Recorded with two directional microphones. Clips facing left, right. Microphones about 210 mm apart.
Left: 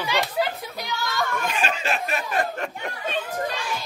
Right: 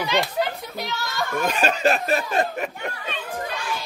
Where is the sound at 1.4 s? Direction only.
40° right (ahead or behind).